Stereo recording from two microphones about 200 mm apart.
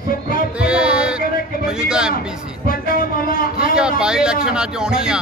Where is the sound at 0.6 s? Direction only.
5° right (ahead or behind).